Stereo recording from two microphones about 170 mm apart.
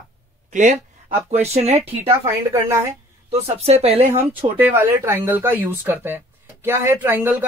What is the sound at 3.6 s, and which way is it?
Speech, 35° right (ahead or behind).